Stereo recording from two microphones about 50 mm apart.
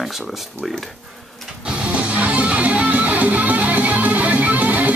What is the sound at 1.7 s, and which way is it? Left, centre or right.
Music, right.